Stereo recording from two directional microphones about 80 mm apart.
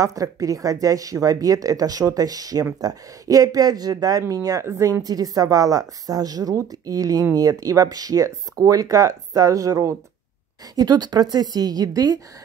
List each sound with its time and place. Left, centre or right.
0.0 s a woman's voice: right
5.0 s speech: right
10.8 s speech: right